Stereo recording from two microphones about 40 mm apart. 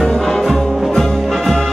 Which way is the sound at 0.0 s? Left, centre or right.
Centre.